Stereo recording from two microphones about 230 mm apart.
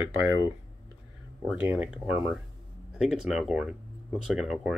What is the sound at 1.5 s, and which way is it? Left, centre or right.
Speech, centre.